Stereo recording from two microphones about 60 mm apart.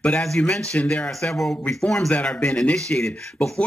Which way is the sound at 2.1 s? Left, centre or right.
Centre.